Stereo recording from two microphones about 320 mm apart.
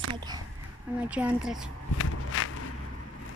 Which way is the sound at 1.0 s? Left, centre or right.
Centre.